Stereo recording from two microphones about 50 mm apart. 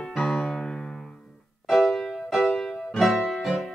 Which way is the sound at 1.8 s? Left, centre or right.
Left.